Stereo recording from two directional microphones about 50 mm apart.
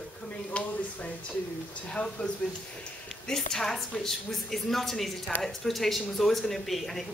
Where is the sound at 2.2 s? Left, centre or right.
Left.